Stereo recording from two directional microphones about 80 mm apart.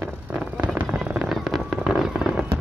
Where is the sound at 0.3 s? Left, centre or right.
Right.